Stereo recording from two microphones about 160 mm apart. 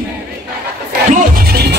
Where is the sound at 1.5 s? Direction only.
90° right.